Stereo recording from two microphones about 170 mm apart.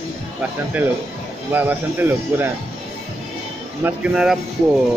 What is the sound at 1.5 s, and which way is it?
Speech, 10° right (ahead or behind).